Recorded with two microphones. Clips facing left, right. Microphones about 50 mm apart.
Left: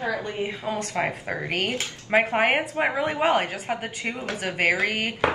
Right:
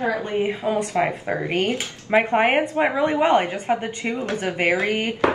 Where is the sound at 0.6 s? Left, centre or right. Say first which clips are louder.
Right 3 dB; centre.